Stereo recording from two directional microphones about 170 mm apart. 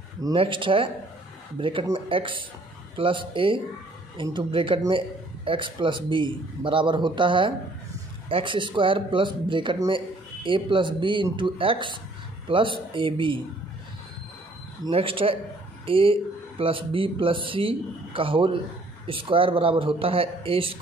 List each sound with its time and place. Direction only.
0.2 s a man's voice: 30° right (ahead or behind)
14.9 s speech: 35° right (ahead or behind)